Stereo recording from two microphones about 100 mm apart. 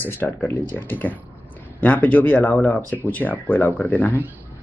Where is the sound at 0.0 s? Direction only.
20° left (ahead or behind).